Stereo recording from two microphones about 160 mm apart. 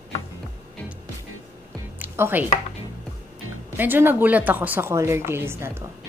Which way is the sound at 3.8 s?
10° right (ahead or behind).